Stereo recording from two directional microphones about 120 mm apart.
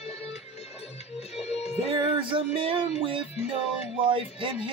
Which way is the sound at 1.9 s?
45° right (ahead or behind).